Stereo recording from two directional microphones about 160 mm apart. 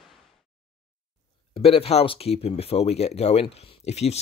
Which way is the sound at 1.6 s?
35° left (ahead or behind).